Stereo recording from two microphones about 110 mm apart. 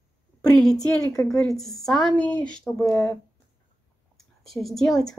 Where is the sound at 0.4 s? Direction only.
5° left (ahead or behind).